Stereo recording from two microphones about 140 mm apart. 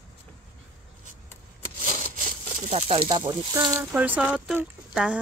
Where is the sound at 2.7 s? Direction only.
45° right (ahead or behind).